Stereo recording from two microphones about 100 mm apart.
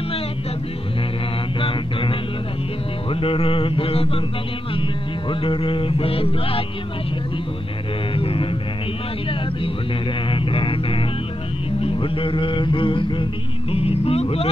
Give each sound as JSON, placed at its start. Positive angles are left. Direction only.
{"t": 1.6, "sound": "mantra", "side_deg": 60}
{"t": 3.1, "sound": "music", "side_deg": 65}
{"t": 5.3, "sound": "music", "side_deg": 60}
{"t": 8.1, "sound": "music", "side_deg": 65}
{"t": 10.3, "sound": "music", "side_deg": 60}
{"t": 13.7, "sound": "music", "side_deg": 75}